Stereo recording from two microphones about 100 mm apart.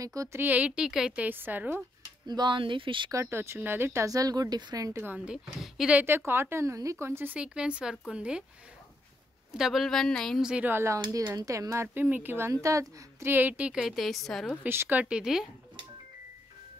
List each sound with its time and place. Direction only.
0.0 s speech: 35° right (ahead or behind)
0.4 s a woman's voice: 15° right (ahead or behind)
2.2 s speech: 45° right (ahead or behind)
3.1 s speech: 25° right (ahead or behind)
5.0 s a woman's voice: 15° right (ahead or behind)
5.9 s a woman's voice: 25° right (ahead or behind)
7.3 s a woman's voice: 10° right (ahead or behind)
9.5 s a woman's voice: 5° right (ahead or behind)
10.4 s a woman's voice: 10° right (ahead or behind)
10.7 s a woman's voice: 25° right (ahead or behind); by 14.5 s 5° left (ahead or behind)
14.6 s a woman's voice: 20° right (ahead or behind)